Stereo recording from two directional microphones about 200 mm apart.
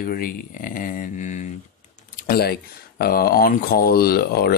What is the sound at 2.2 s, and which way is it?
Speech, 50° left (ahead or behind).